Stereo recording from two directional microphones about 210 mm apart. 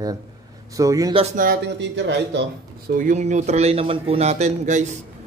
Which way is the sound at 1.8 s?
55° right (ahead or behind).